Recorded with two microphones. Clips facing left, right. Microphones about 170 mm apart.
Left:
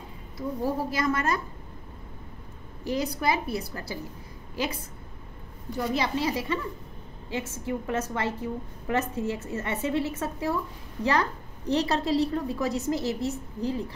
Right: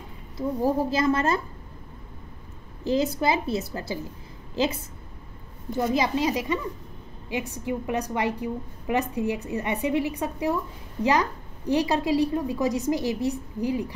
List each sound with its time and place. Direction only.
0.4 s a woman's voice: 25° right (ahead or behind)
2.8 s a woman's voice: 25° right (ahead or behind)